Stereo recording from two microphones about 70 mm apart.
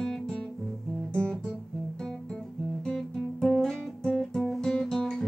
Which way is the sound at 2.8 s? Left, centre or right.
Centre.